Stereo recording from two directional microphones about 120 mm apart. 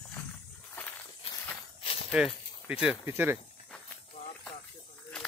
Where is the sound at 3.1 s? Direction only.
20° right (ahead or behind).